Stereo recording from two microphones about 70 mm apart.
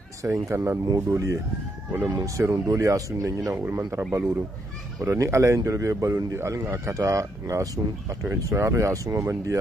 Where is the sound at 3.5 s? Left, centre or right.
Right.